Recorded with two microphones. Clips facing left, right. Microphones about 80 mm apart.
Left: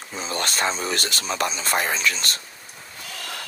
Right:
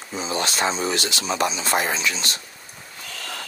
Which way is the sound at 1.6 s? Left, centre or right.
Right.